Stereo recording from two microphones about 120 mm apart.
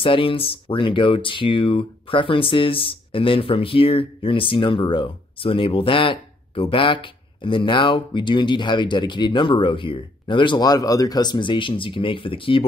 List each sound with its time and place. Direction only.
0.0 s speech: 45° left (ahead or behind)